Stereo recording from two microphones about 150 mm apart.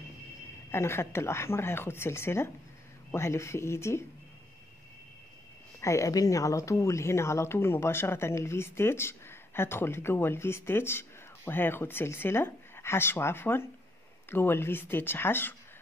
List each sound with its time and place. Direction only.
0.7 s speech: 15° left (ahead or behind)
5.8 s speech: 20° left (ahead or behind)